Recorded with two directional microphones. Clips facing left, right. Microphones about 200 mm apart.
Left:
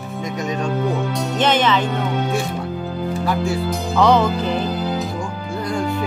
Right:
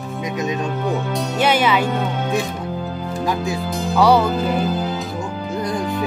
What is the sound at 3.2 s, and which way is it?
Speech, 15° right (ahead or behind).